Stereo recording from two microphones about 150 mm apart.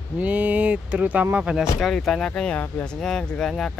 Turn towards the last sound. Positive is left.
turn(degrees=5)  # may be behind; listen again after turning